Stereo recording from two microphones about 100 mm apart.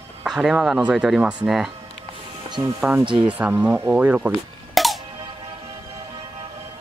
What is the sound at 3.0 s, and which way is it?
Speech, 55° right (ahead or behind).